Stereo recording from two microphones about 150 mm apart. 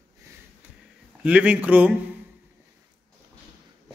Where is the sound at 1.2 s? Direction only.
10° right (ahead or behind).